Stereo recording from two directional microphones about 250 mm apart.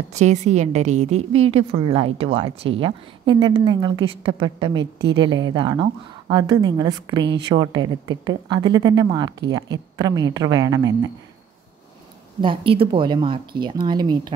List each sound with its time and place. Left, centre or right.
0.1 s a woman's voice: right
12.4 s a woman's voice: centre